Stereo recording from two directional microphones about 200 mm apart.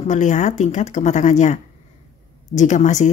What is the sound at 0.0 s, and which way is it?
Speech, 35° left (ahead or behind).